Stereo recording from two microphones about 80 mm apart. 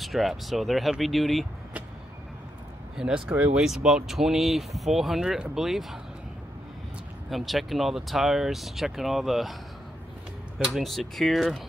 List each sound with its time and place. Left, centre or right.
0.0 s speech: centre
3.0 s speech: centre
3.3 s speech: centre
3.6 s speech: centre
7.2 s speech: centre
10.6 s speech: centre